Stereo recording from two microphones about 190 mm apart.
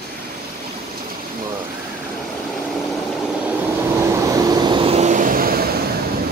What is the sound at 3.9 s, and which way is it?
Vehicle, 15° right (ahead or behind).